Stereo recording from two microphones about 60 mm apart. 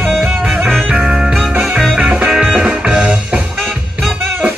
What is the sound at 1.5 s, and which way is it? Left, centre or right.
Music, right.